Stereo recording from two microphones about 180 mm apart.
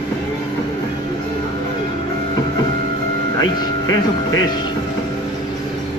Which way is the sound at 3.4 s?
20° left (ahead or behind).